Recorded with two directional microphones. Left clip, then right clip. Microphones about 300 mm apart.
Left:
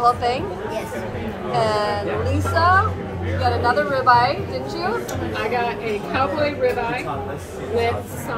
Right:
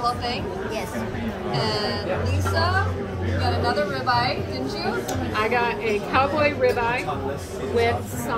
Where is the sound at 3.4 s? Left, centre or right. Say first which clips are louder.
Left 5 dB; centre.